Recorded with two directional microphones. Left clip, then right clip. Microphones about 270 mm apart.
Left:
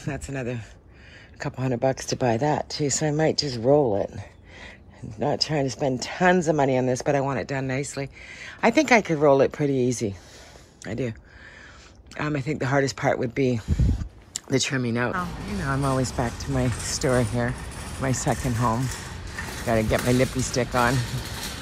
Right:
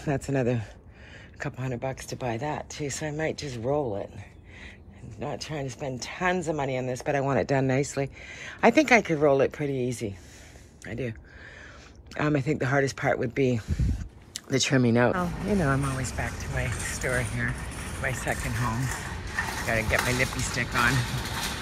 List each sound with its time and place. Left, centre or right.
0.0 s speech: centre
1.4 s speech: centre
5.2 s speech: centre
7.2 s speech: centre
12.1 s speech: centre
16.0 s speech: centre
17.5 s a sound: centre
18.5 s speech: centre